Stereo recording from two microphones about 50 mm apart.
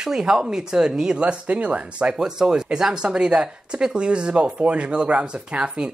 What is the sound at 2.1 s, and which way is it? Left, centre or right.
Speech, centre.